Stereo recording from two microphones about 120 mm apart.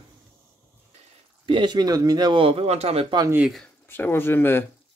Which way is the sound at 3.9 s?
20° left (ahead or behind).